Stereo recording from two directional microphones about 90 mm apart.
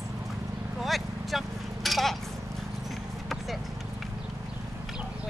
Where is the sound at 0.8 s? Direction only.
Centre (ahead or behind).